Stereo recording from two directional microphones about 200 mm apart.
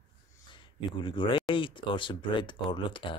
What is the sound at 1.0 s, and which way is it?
Speech, 25° left (ahead or behind).